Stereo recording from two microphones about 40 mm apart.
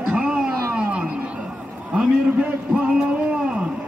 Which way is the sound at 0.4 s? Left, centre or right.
Centre.